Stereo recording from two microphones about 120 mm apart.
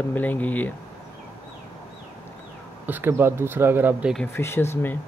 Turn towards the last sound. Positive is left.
turn(degrees=20)  # may be behind; listen again after turning